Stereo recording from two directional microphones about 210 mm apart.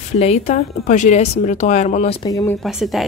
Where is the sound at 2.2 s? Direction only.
15° left (ahead or behind).